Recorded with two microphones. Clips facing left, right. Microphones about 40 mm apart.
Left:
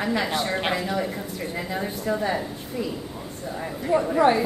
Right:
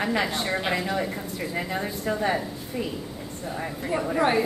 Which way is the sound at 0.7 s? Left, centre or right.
Right.